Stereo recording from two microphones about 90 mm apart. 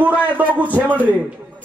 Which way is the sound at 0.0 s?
15° right (ahead or behind).